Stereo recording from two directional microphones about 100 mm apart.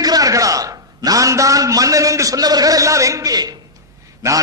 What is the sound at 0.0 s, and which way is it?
A man's voice, 40° right (ahead or behind).